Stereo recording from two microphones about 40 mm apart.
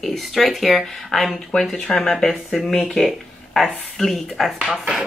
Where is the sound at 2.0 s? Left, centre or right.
Centre.